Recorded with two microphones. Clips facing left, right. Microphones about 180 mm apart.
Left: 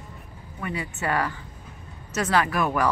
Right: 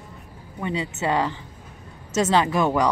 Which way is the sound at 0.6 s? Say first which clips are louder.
Right 4 dB; 20° right (ahead or behind).